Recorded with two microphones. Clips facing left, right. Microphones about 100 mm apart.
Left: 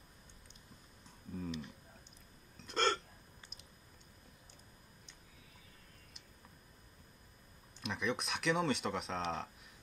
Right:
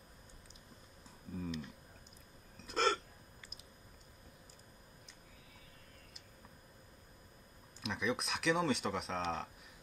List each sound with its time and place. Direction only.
1.3 s a sound: centre (ahead or behind)
2.5 s hiccup: centre (ahead or behind)
7.7 s speech: centre (ahead or behind)